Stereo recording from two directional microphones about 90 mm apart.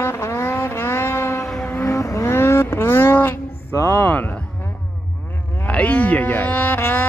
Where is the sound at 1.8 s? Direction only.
35° left (ahead or behind).